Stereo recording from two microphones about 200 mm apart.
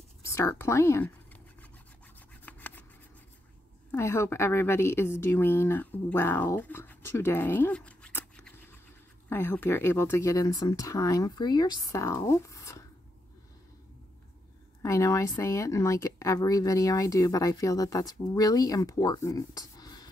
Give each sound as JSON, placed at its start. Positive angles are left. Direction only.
{"t": 0.3, "sound": "writing", "side_deg": 15}
{"t": 2.4, "sound": "rub", "side_deg": 10}
{"t": 3.9, "sound": "speech", "side_deg": 10}
{"t": 14.8, "sound": "speech", "side_deg": 15}